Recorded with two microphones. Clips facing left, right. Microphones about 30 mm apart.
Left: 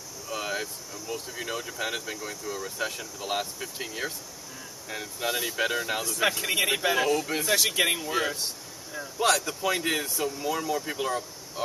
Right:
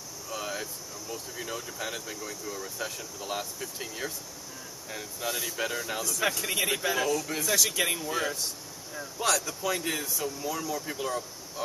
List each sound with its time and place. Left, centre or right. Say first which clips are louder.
0.3 s speech: left 4 dB; left